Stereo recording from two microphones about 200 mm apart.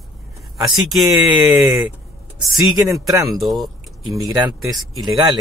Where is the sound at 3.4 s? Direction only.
Centre (ahead or behind).